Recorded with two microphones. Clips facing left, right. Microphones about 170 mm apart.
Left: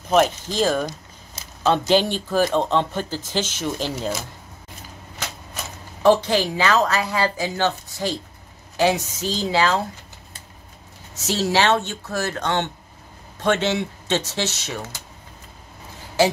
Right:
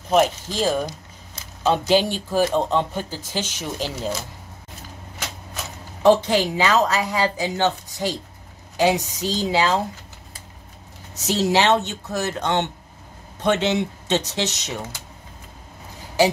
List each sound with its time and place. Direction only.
0.1 s speech: 10° right (ahead or behind)
6.0 s speech: 20° right (ahead or behind)
11.2 s speech: 15° right (ahead or behind)